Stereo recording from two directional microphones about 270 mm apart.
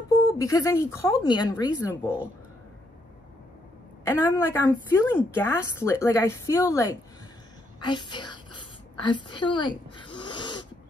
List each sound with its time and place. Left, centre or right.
0.1 s a woman's voice: centre
4.0 s a woman's voice: centre
7.8 s whispering: centre